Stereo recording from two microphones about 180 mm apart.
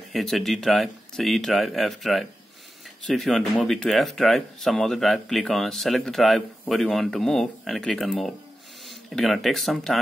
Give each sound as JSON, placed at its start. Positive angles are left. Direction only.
{"t": 0.1, "sound": "speech", "side_deg": 0}